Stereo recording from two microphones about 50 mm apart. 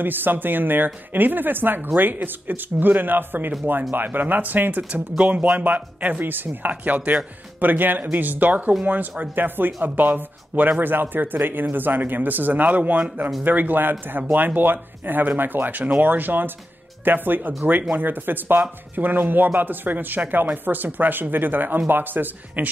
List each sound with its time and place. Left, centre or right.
0.0 s speech: right